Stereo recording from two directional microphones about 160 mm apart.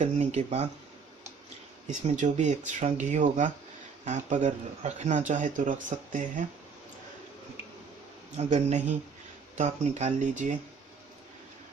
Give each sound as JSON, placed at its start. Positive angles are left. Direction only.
{"t": 0.0, "sound": "speech", "side_deg": -45}
{"t": 1.9, "sound": "speech", "side_deg": -50}
{"t": 8.4, "sound": "speech", "side_deg": -40}